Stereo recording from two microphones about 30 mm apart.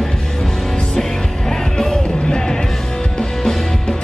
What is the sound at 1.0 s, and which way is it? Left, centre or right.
Music, centre.